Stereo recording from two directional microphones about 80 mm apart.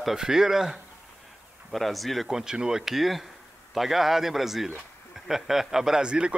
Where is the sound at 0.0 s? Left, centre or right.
Centre.